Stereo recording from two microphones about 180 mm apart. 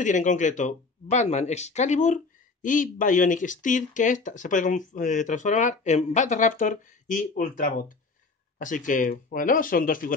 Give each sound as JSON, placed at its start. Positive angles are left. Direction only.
{"t": 0.0, "sound": "speech", "side_deg": 45}